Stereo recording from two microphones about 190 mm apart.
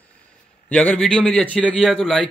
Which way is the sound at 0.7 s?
5° left (ahead or behind).